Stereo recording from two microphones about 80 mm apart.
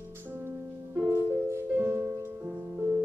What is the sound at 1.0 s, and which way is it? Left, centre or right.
Music, right.